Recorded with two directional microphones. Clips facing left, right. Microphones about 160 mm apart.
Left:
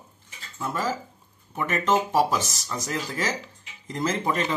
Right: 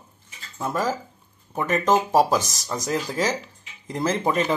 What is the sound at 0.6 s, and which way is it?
Speech, 40° right (ahead or behind).